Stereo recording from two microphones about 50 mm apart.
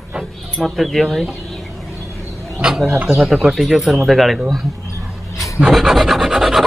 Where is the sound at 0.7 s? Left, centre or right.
Centre.